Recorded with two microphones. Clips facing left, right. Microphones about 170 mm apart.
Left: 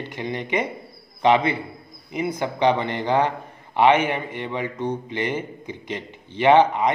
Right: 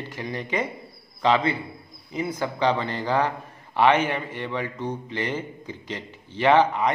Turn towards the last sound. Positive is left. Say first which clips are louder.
# left 3 dB
turn(degrees=20)  # may be behind; listen again after turning